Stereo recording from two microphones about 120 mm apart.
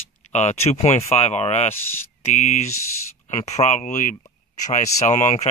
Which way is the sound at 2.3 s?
75° left (ahead or behind).